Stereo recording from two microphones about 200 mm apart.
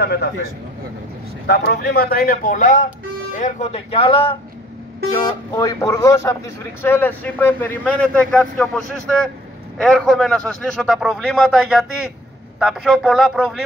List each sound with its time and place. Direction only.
0.0 s speech: 55° left (ahead or behind)
1.5 s a man's voice: 55° left (ahead or behind); by 13.6 s centre (ahead or behind)